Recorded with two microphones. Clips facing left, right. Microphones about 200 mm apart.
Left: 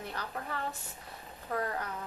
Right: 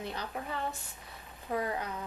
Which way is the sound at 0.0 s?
20° right (ahead or behind).